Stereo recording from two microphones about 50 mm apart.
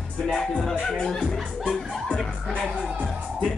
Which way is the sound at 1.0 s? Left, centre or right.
Centre.